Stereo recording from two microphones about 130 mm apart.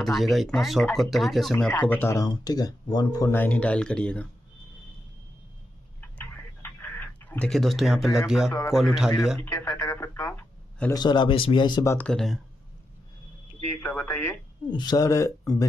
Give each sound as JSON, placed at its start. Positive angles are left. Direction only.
{"t": 0.0, "sound": "speech", "side_deg": 0}
{"t": 1.7, "sound": "speech", "side_deg": 15}
{"t": 2.2, "sound": "speech", "side_deg": 30}
{"t": 3.3, "sound": "speech", "side_deg": 10}
{"t": 6.6, "sound": "tick-tock", "side_deg": 15}
{"t": 8.5, "sound": "speech", "side_deg": 20}
{"t": 8.7, "sound": "speech", "side_deg": 0}
{"t": 9.4, "sound": "a sound", "side_deg": 20}
{"t": 11.0, "sound": "speech", "side_deg": 35}
{"t": 11.8, "sound": "speech", "side_deg": 20}
{"t": 12.1, "sound": "speech", "side_deg": 5}
{"t": 13.7, "sound": "speech", "side_deg": 15}
{"t": 14.7, "sound": "speech", "side_deg": 35}